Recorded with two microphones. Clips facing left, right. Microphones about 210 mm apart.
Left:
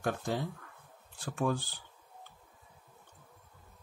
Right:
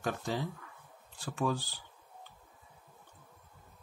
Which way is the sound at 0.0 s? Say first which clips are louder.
Left 1 dB; 55° left (ahead or behind).